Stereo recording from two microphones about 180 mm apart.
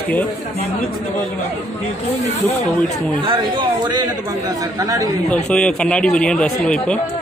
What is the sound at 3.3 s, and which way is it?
A man's voice, 25° right (ahead or behind).